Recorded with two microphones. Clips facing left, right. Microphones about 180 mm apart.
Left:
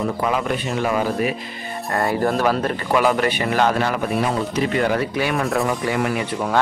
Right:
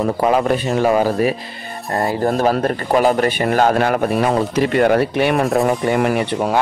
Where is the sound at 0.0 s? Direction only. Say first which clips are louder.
Right 6 dB; 40° right (ahead or behind); by 5.4 s 60° right (ahead or behind).